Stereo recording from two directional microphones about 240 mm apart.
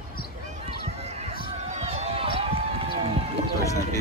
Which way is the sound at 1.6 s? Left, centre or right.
Right.